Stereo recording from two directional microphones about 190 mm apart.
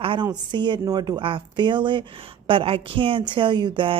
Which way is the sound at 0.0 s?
25° right (ahead or behind).